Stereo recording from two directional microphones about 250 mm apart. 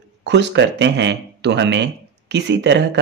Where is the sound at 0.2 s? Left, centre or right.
Right.